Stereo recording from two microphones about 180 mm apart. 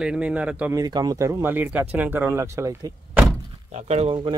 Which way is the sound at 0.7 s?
20° right (ahead or behind).